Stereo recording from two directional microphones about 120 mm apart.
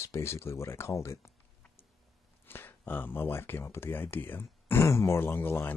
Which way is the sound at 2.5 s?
15° left (ahead or behind).